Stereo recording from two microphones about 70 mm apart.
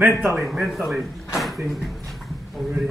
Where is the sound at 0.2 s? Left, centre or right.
Right.